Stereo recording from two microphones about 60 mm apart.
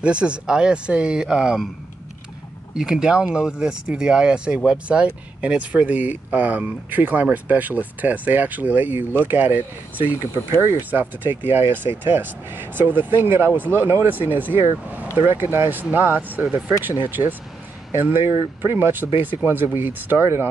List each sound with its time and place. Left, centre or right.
0.0 s speech: centre
2.7 s speech: centre; by 20.2 s right